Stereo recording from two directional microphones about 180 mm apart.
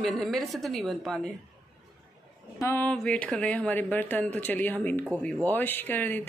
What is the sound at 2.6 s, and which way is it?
Speech, 10° left (ahead or behind).